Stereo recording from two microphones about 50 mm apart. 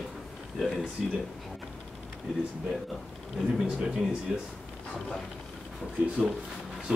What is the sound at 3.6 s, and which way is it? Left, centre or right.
Speech, centre.